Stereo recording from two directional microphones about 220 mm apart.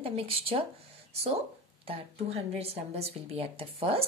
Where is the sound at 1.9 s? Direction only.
25° right (ahead or behind).